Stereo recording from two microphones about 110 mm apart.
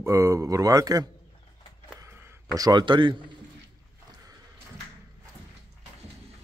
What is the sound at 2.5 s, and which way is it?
Speech, 40° right (ahead or behind).